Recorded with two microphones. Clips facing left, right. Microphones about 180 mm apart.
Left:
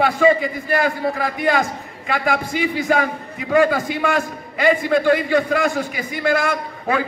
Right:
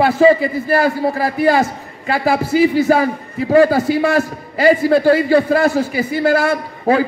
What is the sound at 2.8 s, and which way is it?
A man's voice, 35° right (ahead or behind).